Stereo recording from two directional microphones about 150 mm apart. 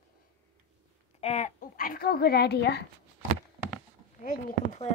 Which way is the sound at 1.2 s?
45° left (ahead or behind).